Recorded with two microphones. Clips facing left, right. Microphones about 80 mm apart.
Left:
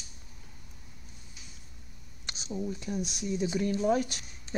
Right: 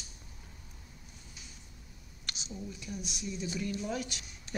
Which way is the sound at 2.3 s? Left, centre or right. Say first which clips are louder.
Left 8 dB; left.